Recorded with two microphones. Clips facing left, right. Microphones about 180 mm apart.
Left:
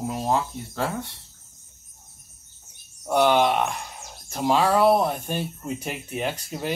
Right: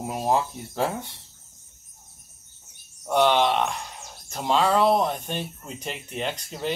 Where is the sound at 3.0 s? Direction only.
10° left (ahead or behind).